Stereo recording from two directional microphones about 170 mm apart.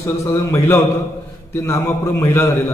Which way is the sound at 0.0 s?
15° left (ahead or behind).